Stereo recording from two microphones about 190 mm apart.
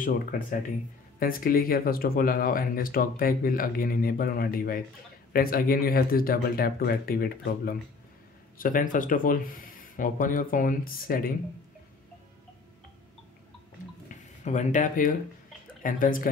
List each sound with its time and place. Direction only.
0.0 s speech: 45° left (ahead or behind)
14.4 s speech: 40° left (ahead or behind)